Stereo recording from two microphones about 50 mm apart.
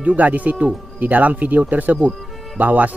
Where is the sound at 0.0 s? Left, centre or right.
Right.